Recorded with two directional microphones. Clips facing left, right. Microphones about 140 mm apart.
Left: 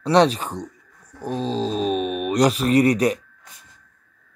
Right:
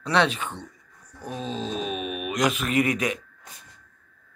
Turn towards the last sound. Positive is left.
turn(degrees=35)  # may be behind; listen again after turning